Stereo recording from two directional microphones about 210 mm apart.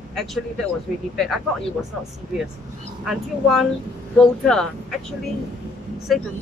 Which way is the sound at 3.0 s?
Centre (ahead or behind).